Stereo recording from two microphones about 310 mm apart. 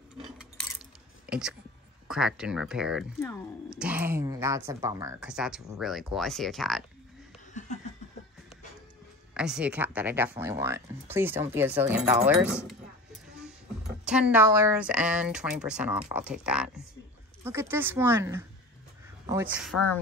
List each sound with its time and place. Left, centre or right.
1.2 s a sound: centre
2.0 s speech: centre
7.5 s chuckle: left
9.3 s speech: centre
14.0 s speech: centre